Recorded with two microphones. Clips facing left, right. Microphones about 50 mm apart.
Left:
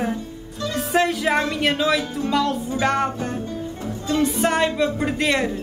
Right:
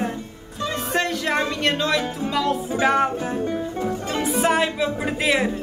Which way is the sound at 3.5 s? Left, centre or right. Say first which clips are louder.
Right 4 dB; right.